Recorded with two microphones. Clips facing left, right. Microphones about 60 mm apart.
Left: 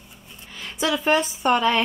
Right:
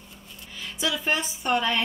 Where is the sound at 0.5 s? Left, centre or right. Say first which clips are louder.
Left 5 dB; left.